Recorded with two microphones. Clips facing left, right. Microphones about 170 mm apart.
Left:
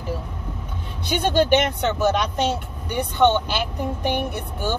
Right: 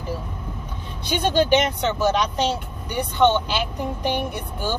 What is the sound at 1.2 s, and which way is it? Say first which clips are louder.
Speech: even; 55° left (ahead or behind).